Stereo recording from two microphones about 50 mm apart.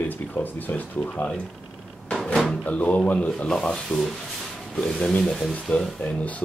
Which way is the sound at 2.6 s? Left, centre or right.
Left.